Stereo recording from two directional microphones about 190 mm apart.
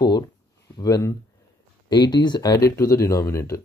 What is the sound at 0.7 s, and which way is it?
Speech, 20° left (ahead or behind).